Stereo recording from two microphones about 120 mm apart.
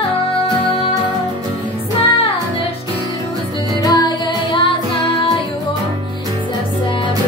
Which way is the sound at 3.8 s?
35° left (ahead or behind).